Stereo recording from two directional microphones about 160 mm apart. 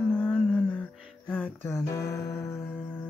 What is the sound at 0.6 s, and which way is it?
Music, 10° left (ahead or behind).